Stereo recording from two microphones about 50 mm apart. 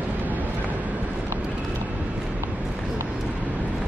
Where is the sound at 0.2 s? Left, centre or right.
Right.